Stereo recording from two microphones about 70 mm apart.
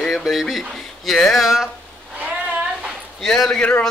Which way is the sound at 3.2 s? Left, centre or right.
Centre.